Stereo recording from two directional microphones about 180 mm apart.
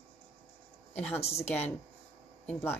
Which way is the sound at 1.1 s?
35° left (ahead or behind).